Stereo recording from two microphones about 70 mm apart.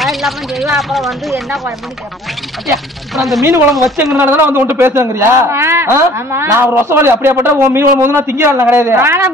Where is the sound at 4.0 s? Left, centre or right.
Centre.